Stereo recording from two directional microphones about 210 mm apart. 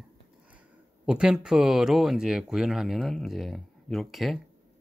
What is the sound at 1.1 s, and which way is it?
Speech, 5° right (ahead or behind).